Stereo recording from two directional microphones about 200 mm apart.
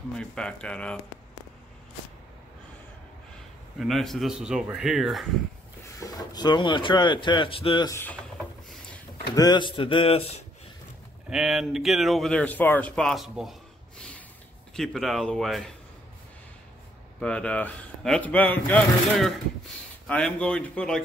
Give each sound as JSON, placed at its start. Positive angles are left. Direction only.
{"t": 0.2, "sound": "speech", "side_deg": 5}
{"t": 3.8, "sound": "speech", "side_deg": 0}
{"t": 5.9, "sound": "speech", "side_deg": 20}
{"t": 7.9, "sound": "speech", "side_deg": 10}
{"t": 9.3, "sound": "speech", "side_deg": 20}
{"t": 11.2, "sound": "speech", "side_deg": 0}
{"t": 17.2, "sound": "speech", "side_deg": 5}